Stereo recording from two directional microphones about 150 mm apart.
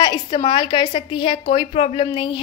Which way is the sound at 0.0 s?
30° left (ahead or behind).